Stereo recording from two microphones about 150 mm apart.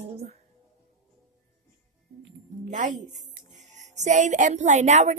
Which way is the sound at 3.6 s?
50° right (ahead or behind).